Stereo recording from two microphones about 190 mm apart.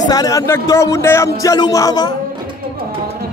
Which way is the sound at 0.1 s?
20° left (ahead or behind).